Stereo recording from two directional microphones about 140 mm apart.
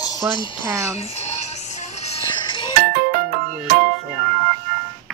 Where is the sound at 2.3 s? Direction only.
35° left (ahead or behind).